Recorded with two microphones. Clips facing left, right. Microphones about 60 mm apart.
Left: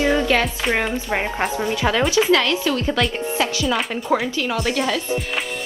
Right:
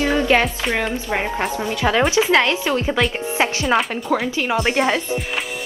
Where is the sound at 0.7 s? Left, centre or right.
Centre.